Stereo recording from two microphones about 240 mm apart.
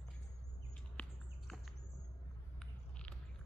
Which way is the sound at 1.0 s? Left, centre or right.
Centre.